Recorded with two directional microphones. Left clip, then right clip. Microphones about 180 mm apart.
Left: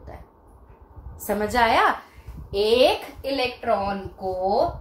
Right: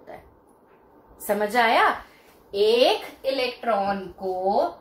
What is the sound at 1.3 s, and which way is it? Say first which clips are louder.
Speech: even; 40° left (ahead or behind).